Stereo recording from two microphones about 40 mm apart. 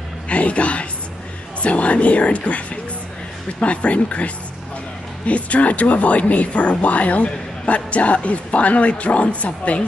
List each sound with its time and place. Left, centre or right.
0.3 s speech: left